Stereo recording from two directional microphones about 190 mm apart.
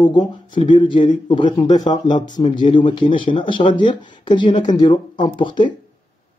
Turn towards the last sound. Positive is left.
turn(degrees=25)  # may be behind; listen again after turning